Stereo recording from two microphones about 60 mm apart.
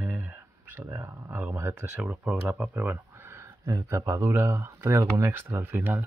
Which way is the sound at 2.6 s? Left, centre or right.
Right.